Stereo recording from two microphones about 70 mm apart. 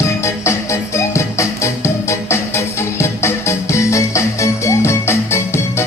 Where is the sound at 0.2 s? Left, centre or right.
Left.